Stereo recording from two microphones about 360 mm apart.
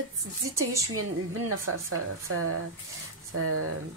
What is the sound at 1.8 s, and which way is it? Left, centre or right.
Speech, right.